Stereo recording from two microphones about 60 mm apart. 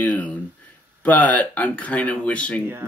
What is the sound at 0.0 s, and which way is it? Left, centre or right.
Speech, left.